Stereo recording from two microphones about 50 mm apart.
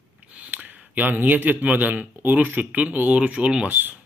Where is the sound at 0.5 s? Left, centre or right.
Right.